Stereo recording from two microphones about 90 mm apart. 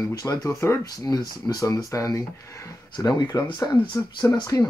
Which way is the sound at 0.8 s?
45° left (ahead or behind).